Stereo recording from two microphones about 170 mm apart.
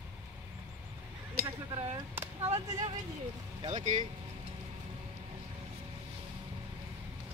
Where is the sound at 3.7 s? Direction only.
45° right (ahead or behind).